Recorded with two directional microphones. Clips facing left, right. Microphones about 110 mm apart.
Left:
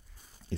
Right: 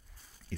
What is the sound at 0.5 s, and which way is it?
Speech, 25° left (ahead or behind).